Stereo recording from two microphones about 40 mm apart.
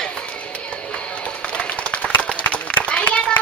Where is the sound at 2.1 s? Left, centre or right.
Left.